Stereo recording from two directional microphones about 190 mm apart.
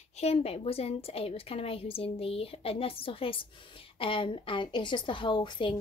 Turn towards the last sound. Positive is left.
turn(degrees=25)  # may be behind; listen again after turning